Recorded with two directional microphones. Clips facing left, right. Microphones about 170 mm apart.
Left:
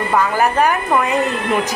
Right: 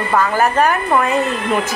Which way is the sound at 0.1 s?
10° left (ahead or behind).